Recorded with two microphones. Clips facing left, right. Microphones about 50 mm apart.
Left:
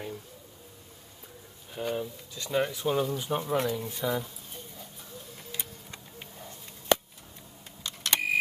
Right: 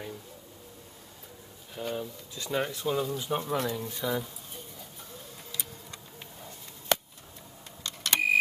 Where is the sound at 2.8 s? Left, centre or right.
Centre.